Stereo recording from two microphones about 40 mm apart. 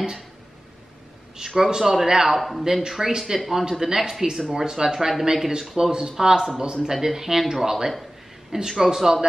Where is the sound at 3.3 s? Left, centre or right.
Centre.